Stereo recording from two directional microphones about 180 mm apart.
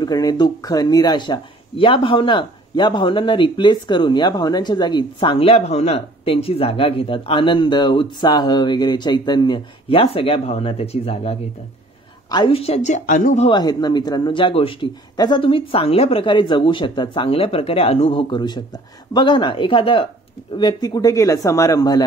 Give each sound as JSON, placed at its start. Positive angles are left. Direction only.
{"t": 0.0, "sound": "a woman's voice", "side_deg": 20}
{"t": 13.5, "sound": "speech", "side_deg": 25}